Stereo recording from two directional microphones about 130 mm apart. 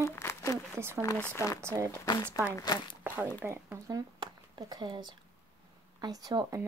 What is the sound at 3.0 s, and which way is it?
Zipper, 15° right (ahead or behind).